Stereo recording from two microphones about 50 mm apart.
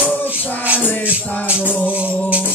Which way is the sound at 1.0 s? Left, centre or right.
Right.